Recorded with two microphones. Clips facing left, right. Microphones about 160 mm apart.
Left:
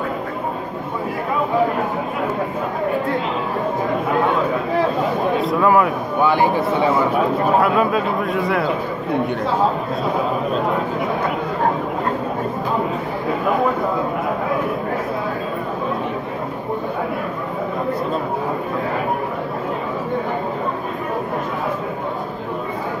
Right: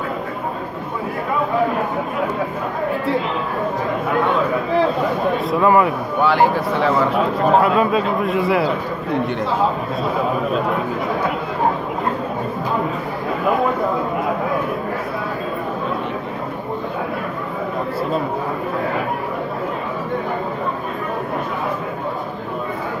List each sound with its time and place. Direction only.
5.5 s speech: centre (ahead or behind)
6.5 s speech: 15° left (ahead or behind)
7.6 s speech: centre (ahead or behind)